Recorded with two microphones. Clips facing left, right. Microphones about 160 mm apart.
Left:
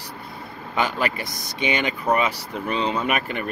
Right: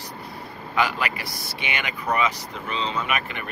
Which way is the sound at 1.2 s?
20° left (ahead or behind).